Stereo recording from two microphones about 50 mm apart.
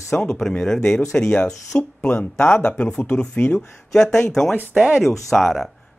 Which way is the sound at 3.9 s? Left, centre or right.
Centre.